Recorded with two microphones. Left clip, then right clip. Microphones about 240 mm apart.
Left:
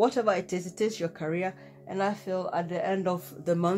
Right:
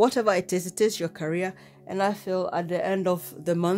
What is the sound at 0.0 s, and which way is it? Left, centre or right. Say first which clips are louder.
Speech: right 3 dB; right.